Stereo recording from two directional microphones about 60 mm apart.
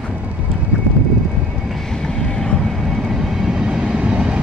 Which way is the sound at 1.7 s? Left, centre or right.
Centre.